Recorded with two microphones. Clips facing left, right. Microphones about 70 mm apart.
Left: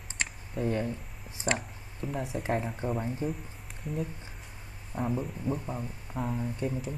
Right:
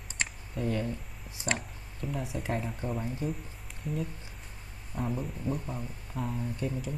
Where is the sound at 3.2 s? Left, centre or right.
Left.